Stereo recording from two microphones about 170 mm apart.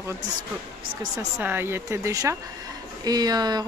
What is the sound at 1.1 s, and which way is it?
Speech, 15° right (ahead or behind).